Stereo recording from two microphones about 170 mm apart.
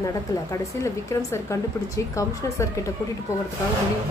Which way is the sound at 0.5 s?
15° left (ahead or behind).